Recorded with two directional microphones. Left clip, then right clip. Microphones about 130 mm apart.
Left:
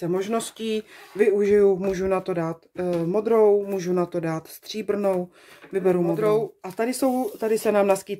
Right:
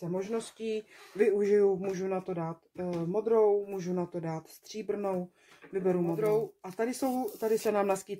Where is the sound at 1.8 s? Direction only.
30° left (ahead or behind).